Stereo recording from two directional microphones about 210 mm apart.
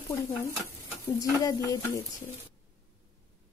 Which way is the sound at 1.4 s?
15° left (ahead or behind).